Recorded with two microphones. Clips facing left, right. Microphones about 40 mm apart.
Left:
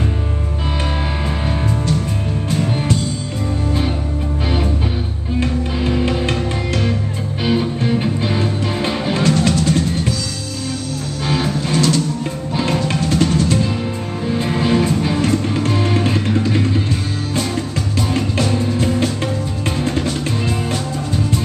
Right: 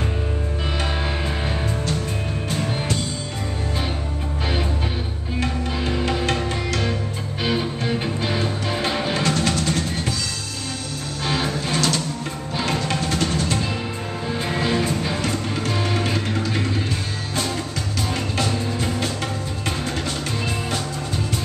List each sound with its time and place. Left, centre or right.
2.5 s music: centre
5.4 s music: centre
7.4 s music: centre
11.2 s music: centre
12.6 s music: centre
12.9 s music: centre
18.1 s music: centre
19.8 s music: centre
20.1 s music: centre